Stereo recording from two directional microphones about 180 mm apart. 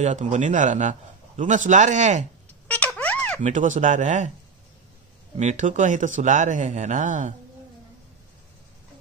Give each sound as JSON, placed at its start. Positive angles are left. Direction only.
{"t": 0.0, "sound": "a man's voice", "side_deg": -40}
{"t": 2.7, "sound": "a sound", "side_deg": 5}
{"t": 3.4, "sound": "a man's voice", "side_deg": -45}
{"t": 5.4, "sound": "a man's voice", "side_deg": -45}